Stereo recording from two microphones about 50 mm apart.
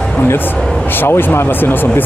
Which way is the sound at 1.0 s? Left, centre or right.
Left.